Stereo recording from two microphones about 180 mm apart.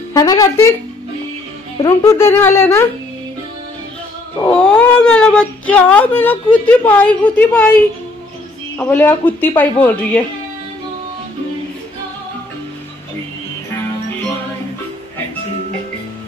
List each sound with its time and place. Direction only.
0.1 s speech: 20° left (ahead or behind)
1.8 s speech: 20° left (ahead or behind)
4.4 s speech: 5° left (ahead or behind)
8.7 s speech: 10° left (ahead or behind)